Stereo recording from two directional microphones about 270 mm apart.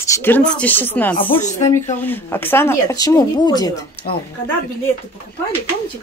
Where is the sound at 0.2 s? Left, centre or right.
Centre.